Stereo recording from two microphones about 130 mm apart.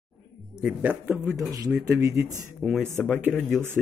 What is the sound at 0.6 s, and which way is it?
A man's voice, 10° right (ahead or behind).